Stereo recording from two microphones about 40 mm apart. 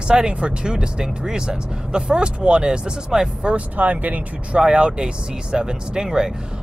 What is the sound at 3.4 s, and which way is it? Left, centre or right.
Speech, right.